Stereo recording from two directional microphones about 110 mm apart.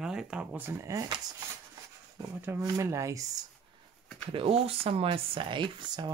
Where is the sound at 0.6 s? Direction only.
25° right (ahead or behind).